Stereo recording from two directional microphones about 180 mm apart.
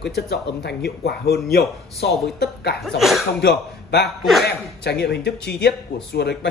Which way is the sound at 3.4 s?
70° left (ahead or behind).